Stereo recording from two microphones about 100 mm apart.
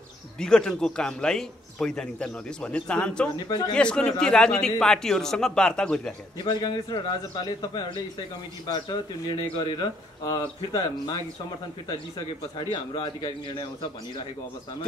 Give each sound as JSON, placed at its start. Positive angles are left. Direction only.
{"t": 0.4, "sound": "a man's voice", "side_deg": 5}
{"t": 3.3, "sound": "speech", "side_deg": 45}
{"t": 3.7, "sound": "a man's voice", "side_deg": 10}
{"t": 6.3, "sound": "speech", "side_deg": 50}
{"t": 12.5, "sound": "speech", "side_deg": 50}